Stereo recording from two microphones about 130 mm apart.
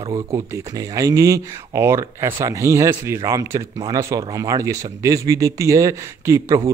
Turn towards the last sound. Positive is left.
turn(degrees=-25)  # may be behind; listen again after turning